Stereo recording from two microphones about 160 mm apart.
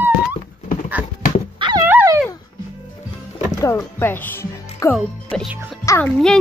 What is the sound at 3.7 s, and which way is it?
Speech, 15° left (ahead or behind).